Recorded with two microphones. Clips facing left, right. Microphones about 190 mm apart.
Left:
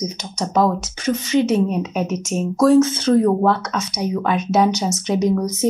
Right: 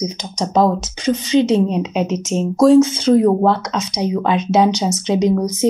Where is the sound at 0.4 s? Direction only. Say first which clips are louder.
Right 3 dB; 20° right (ahead or behind).